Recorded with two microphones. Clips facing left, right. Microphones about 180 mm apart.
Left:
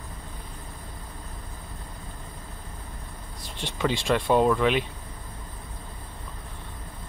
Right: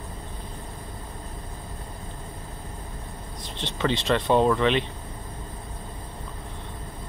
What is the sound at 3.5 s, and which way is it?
Speech, 10° left (ahead or behind).